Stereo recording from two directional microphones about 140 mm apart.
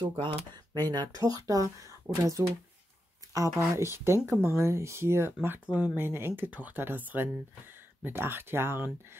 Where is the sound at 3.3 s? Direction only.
20° right (ahead or behind).